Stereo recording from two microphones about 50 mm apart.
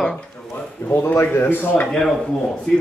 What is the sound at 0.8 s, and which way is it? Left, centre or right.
Speech, left.